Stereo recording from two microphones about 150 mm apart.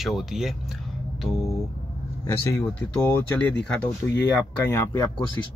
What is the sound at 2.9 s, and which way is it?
Speech, 10° left (ahead or behind).